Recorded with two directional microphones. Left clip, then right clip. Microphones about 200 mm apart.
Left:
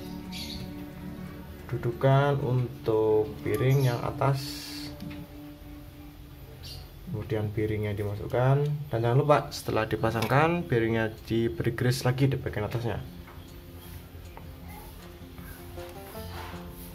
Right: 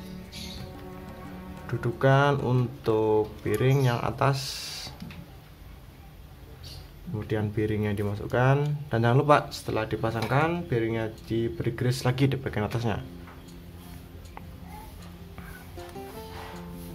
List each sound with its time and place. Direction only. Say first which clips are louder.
1.7 s speech: right 2 dB; 20° right (ahead or behind)
7.2 s speech: right 1 dB; 20° right (ahead or behind)
9.5 s speech: left 1 dB; centre (ahead or behind); by 13.0 s 20° right (ahead or behind)